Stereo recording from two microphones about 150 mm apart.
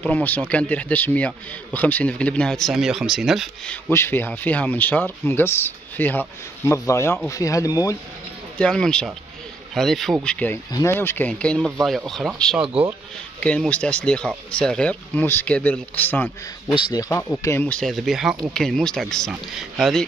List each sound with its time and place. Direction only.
0.0 s speech: 10° left (ahead or behind)
3.9 s speech: 15° left (ahead or behind)
8.5 s speech: 5° left (ahead or behind)
16.7 s speech: 30° left (ahead or behind)
17.1 s speech: 15° left (ahead or behind)